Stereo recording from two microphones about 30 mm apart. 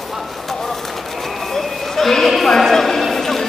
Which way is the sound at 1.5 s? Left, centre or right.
Centre.